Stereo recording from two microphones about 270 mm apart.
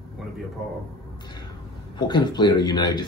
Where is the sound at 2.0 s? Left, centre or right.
Centre.